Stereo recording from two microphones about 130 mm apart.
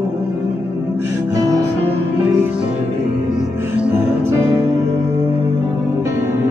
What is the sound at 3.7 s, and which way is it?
Music, 10° right (ahead or behind).